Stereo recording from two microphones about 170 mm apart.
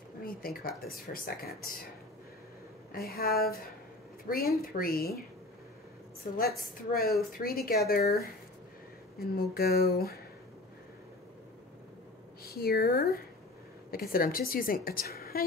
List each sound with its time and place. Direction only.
0.2 s speech: 60° left (ahead or behind)
2.9 s speech: 65° left (ahead or behind)
6.2 s speech: 55° left (ahead or behind)
9.2 s speech: 65° left (ahead or behind)
12.4 s speech: 65° left (ahead or behind)